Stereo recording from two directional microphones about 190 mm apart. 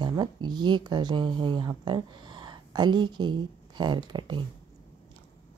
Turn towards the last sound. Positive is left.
turn(degrees=-25)  # may be behind; listen again after turning